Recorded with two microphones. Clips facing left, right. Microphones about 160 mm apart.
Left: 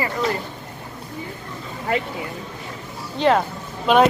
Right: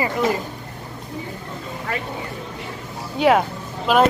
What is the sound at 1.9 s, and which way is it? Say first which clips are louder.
Speech: left 7 dB; 20° left (ahead or behind).